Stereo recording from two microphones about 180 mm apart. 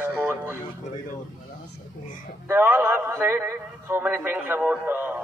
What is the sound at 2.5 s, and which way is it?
Speech, 10° right (ahead or behind).